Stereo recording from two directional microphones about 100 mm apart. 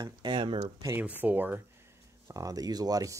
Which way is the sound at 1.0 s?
15° right (ahead or behind).